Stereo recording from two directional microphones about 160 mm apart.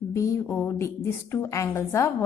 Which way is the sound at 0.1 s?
15° left (ahead or behind).